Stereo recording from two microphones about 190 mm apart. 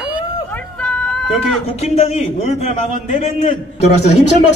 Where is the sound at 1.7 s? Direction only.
35° left (ahead or behind).